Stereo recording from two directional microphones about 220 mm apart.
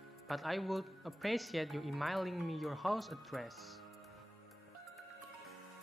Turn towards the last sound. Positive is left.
turn(degrees=0)  # may be behind; listen again after turning